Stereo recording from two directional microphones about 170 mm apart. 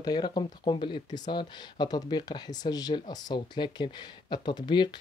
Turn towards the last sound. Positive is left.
turn(degrees=25)  # may be behind; listen again after turning